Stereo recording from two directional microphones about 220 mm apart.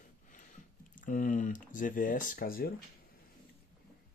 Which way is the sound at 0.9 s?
35° left (ahead or behind).